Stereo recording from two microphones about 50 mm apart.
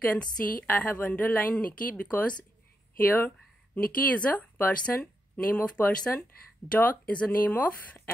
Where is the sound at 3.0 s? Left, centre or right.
Left.